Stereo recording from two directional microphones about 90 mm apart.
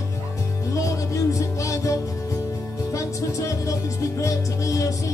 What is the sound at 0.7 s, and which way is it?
Music, 35° left (ahead or behind).